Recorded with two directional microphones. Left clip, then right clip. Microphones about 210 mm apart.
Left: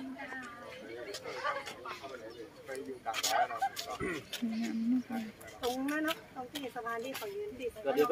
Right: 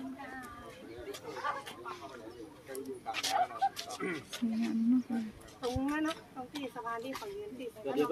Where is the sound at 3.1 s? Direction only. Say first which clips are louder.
Left 1 dB; 50° left (ahead or behind).